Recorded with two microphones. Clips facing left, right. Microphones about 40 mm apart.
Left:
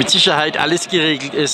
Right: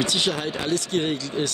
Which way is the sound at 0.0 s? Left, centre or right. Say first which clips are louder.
Left 9 dB; left.